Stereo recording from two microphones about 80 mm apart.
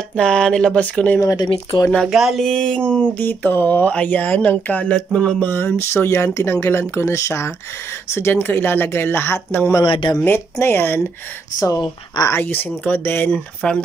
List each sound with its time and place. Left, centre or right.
0.1 s speech: centre
1.2 s speech: left
2.0 s a sound: centre
2.4 s speech: centre
5.8 s speech: left
9.8 s speech: left
10.2 s speech: left
12.3 s speech: left
13.6 s speech: centre